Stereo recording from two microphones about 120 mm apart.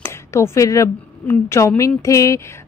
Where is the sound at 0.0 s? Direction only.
25° left (ahead or behind).